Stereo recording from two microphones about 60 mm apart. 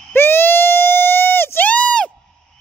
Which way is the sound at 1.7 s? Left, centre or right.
Centre.